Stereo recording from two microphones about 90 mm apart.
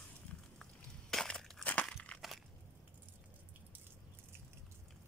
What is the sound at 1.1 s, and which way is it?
Crushing, 5° left (ahead or behind).